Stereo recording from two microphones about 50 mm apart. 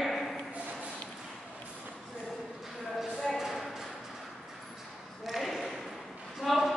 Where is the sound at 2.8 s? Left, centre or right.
Centre.